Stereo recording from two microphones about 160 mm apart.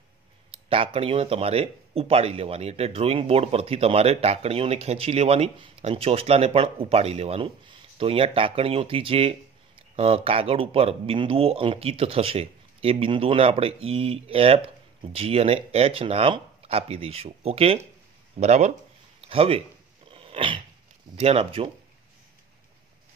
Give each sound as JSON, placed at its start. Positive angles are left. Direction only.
{"t": 0.5, "sound": "a man's voice", "side_deg": -35}
{"t": 20.1, "sound": "dog", "side_deg": -35}
{"t": 21.2, "sound": "speech", "side_deg": -40}